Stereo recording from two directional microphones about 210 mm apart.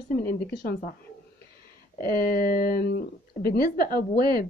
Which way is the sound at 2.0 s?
45° left (ahead or behind).